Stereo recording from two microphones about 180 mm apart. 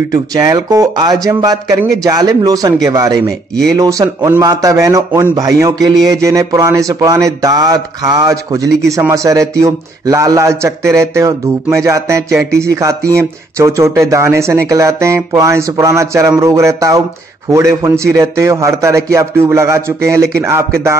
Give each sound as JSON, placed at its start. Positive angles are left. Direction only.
{"t": 0.1, "sound": "speech", "side_deg": -20}